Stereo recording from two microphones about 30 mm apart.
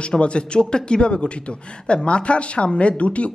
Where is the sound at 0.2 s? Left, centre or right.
Left.